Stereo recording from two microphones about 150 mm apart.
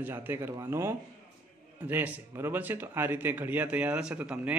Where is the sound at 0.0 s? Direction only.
15° right (ahead or behind).